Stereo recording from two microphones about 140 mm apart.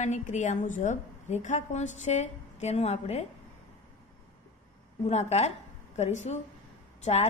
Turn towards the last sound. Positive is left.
turn(degrees=50)  # may be behind; listen again after turning